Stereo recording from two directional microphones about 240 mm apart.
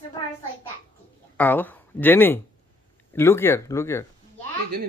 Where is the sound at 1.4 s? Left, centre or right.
Centre.